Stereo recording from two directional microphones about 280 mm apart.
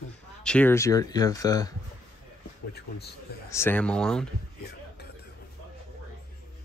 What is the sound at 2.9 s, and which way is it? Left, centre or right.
Speech, left.